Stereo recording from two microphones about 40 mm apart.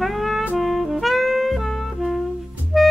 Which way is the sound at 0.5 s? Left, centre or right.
Centre.